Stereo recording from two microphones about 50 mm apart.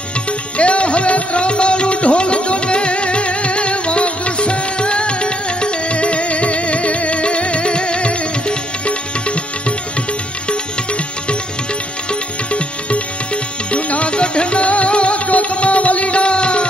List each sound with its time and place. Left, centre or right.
0.6 s music: left
12.1 s music: left